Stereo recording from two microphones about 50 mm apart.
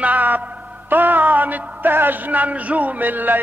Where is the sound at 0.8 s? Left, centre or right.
Right.